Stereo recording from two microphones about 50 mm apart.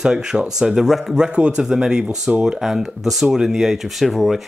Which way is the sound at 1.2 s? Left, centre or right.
Centre.